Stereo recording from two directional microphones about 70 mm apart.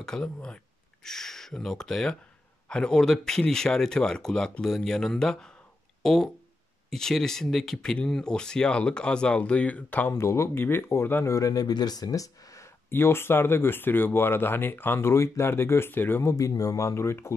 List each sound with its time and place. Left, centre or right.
0.0 s speech: centre
10.1 s speech: left
11.2 s speech: left
12.9 s speech: left
16.3 s speech: left